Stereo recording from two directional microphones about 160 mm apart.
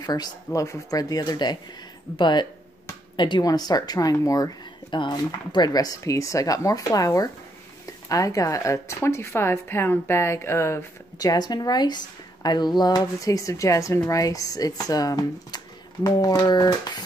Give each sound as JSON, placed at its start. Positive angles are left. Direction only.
{"t": 0.0, "sound": "speech", "side_deg": 25}